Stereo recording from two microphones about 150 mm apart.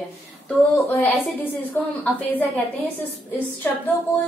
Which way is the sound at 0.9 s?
10° left (ahead or behind).